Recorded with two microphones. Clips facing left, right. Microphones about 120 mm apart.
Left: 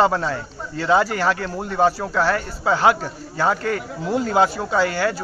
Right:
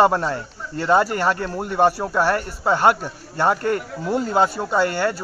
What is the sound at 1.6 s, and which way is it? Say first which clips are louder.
Speech: right 2 dB; 5° right (ahead or behind).